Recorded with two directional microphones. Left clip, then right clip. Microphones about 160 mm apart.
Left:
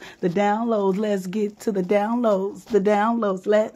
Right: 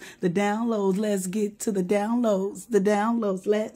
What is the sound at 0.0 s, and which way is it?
Speech, 15° right (ahead or behind).